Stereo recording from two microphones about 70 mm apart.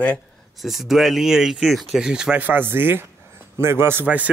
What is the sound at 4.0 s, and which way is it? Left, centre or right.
Speech, right.